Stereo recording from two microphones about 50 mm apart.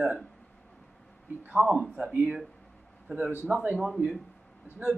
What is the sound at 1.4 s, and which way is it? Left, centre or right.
Speech, right.